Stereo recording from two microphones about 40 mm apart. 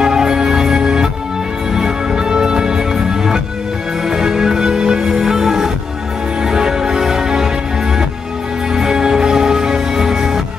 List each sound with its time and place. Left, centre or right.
0.0 s music: centre
8.7 s music: centre